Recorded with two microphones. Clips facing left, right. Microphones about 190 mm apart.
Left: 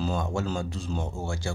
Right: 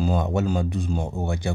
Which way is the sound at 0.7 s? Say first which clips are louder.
Right 5 dB; 55° right (ahead or behind).